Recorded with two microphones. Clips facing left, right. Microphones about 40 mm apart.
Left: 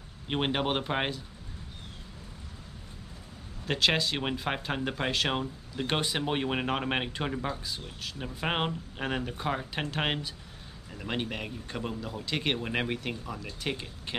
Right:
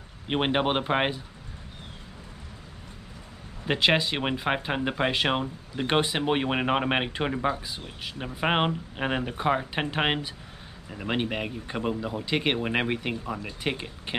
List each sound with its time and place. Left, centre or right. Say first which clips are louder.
0.3 s speech: right 4 dB; centre
3.6 s speech: right 4 dB; centre